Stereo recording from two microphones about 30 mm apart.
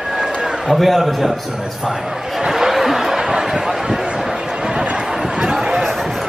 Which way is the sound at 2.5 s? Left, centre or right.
Centre.